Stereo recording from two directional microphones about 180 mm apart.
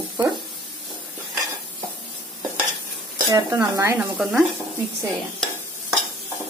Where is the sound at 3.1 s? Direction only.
20° right (ahead or behind).